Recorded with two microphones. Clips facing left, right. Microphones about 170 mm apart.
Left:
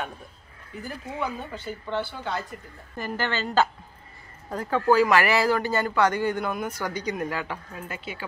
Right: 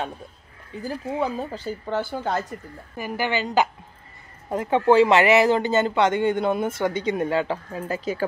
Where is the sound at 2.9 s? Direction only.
10° right (ahead or behind).